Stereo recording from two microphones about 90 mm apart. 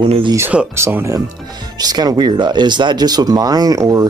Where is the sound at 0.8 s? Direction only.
30° right (ahead or behind).